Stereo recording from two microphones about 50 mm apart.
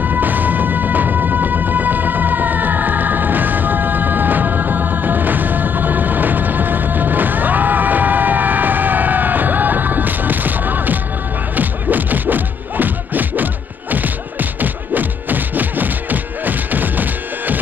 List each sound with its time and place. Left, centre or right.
0.0 s music: right